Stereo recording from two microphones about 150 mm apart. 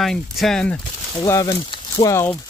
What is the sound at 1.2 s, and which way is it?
Speech, 20° left (ahead or behind).